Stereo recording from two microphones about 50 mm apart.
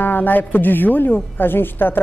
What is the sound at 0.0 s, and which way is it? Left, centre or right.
A woman's voice, left.